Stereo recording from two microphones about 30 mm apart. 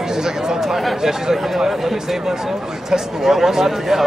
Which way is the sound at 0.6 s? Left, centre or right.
Centre.